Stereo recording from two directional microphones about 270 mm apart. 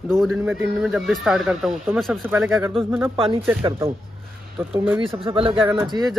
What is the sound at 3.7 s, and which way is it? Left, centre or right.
Speech, centre.